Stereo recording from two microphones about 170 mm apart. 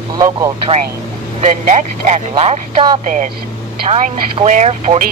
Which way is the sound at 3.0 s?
45° right (ahead or behind).